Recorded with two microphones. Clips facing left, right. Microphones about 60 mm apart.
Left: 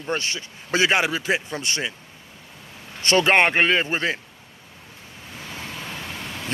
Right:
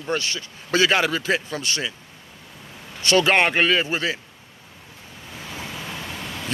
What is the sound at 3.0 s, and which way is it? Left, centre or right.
Speech, left.